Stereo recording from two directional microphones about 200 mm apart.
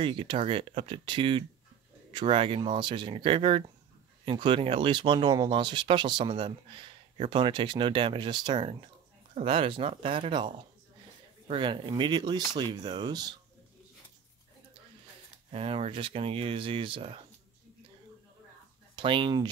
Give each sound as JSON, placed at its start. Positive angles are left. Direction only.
{"t": 0.0, "sound": "speech", "side_deg": -25}
{"t": 15.5, "sound": "speech", "side_deg": -30}
{"t": 18.9, "sound": "speech", "side_deg": -25}